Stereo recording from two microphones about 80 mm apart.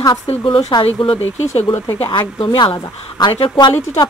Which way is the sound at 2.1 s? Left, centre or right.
Left.